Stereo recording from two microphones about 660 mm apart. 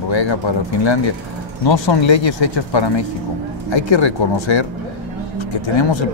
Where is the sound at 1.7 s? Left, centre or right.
Left.